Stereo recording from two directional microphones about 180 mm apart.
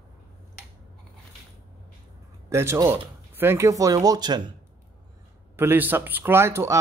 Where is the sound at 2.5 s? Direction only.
15° right (ahead or behind).